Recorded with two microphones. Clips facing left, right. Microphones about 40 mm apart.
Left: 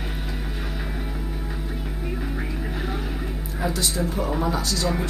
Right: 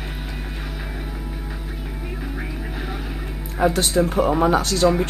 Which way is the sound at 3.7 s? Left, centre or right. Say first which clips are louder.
Right 7 dB; right.